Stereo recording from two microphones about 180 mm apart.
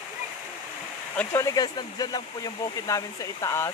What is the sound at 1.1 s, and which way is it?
Speech, 15° left (ahead or behind).